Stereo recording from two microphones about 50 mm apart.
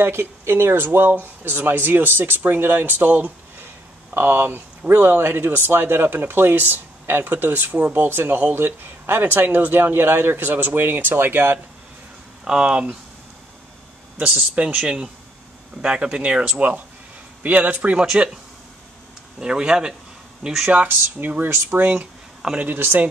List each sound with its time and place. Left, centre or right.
0.0 s speech: right
12.4 s speech: centre
14.5 s speech: right
17.4 s speech: right
18.0 s speech: centre
19.4 s speech: centre
20.6 s speech: right
21.6 s speech: right
21.9 s speech: centre
22.6 s speech: right